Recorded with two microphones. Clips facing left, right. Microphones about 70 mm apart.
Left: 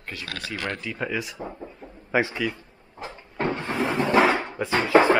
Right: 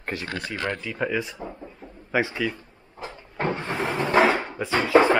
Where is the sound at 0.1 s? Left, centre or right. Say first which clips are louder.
Right 5 dB; right.